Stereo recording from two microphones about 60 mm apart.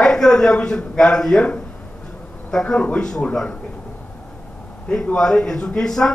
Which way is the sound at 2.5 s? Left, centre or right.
Centre.